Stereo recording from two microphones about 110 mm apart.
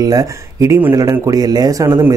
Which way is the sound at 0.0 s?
30° right (ahead or behind).